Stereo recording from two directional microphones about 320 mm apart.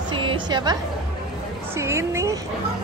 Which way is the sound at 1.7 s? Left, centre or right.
Centre.